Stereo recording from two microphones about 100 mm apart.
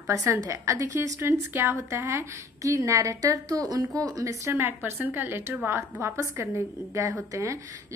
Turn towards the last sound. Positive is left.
turn(degrees=-30)  # may be behind; listen again after turning